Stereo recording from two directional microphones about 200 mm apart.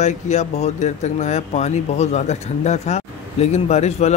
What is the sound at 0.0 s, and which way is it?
Speech, 35° left (ahead or behind).